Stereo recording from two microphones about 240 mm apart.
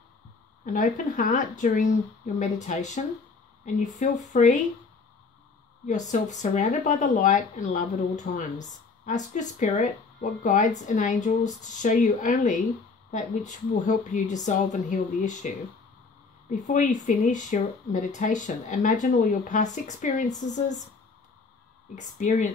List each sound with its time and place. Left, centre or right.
0.7 s speech: left
4.3 s speech: left
5.9 s speech: left
21.9 s speech: left